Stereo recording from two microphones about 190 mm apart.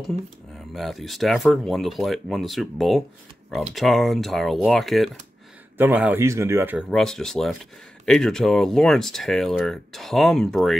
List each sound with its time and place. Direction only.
0.7 s speech: centre (ahead or behind)
6.9 s speech: centre (ahead or behind)